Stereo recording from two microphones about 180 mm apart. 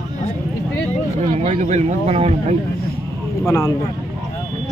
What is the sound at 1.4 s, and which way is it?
Speech, 40° right (ahead or behind).